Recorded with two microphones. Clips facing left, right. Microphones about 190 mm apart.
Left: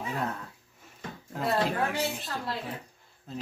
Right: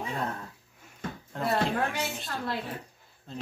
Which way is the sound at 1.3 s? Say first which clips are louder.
Even; 5° left (ahead or behind).